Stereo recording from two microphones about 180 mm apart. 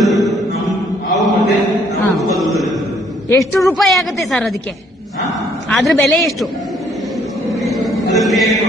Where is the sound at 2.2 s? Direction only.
Centre (ahead or behind).